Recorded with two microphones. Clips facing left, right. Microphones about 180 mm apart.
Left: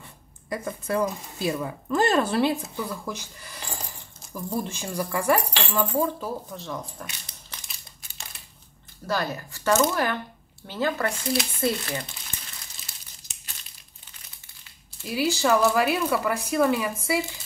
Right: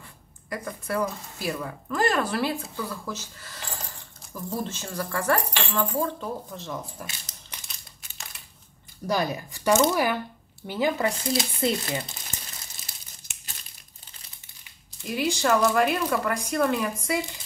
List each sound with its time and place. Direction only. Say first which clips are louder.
0.5 s speech: left 3 dB; 25° left (ahead or behind)
6.5 s speech: left 1 dB; centre (ahead or behind)
9.0 s speech: right 2 dB; 15° right (ahead or behind)
15.0 s speech: left 1 dB; 5° left (ahead or behind)